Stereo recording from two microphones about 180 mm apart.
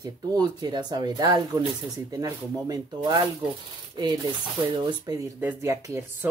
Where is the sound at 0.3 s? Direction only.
20° right (ahead or behind).